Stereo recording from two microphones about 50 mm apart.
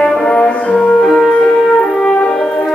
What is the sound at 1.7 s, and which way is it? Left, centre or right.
French horn, centre.